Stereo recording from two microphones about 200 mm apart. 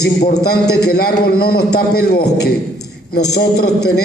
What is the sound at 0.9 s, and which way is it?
A man's voice, 50° left (ahead or behind).